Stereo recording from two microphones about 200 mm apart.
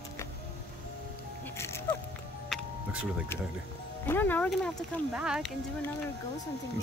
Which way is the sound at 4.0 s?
10° left (ahead or behind).